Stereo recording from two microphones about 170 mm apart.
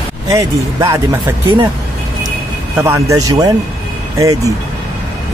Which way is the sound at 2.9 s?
20° right (ahead or behind).